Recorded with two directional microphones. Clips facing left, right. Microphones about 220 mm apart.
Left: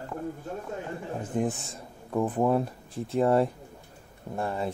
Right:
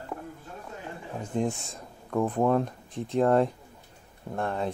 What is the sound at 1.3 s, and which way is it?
Speech, 10° left (ahead or behind).